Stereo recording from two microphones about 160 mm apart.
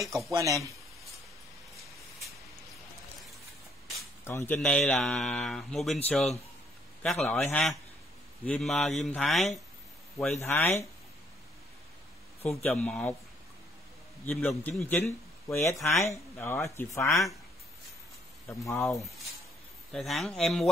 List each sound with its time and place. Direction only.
0.0 s speech: centre (ahead or behind)
0.3 s speech: 20° right (ahead or behind)
4.2 s a man's voice: 15° left (ahead or behind)
10.4 s speech: 15° left (ahead or behind)
12.4 s a man's voice: 40° left (ahead or behind)
12.6 s speech: 10° left (ahead or behind)
14.3 s speech: centre (ahead or behind); by 17.3 s 20° left (ahead or behind)
18.5 s speech: 20° left (ahead or behind)
19.9 s speech: centre (ahead or behind)